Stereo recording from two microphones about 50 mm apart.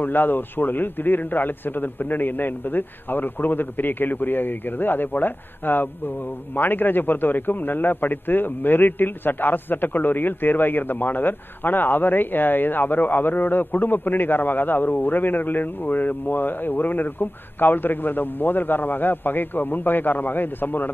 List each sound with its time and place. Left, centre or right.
0.0 s a man's voice: left